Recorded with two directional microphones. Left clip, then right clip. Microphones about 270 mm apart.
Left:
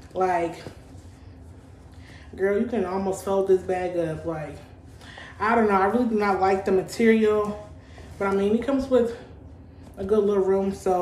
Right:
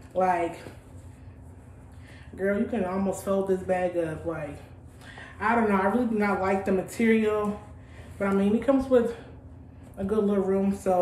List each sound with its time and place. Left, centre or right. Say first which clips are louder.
0.1 s speech: left 1 dB; centre
2.3 s speech: left 4 dB; centre
10.0 s speech: left 5 dB; centre